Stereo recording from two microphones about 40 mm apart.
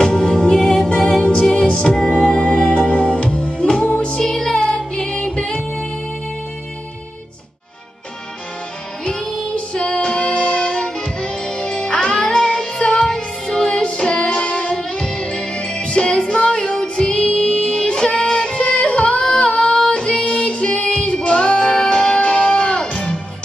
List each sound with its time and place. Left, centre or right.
0.0 s music: left
4.2 s music: centre
9.0 s music: centre
19.9 s female singing: left
20.4 s music: left